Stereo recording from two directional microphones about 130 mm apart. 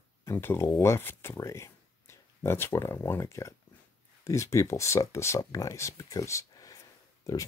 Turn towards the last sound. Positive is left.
turn(degrees=25)  # may be behind; listen again after turning